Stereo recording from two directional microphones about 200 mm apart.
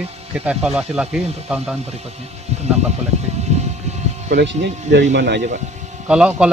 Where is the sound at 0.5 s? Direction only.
5° right (ahead or behind).